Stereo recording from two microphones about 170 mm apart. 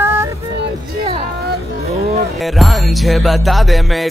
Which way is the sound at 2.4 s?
Centre (ahead or behind).